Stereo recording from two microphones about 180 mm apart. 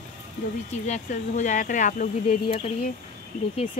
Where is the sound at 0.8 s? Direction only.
40° left (ahead or behind).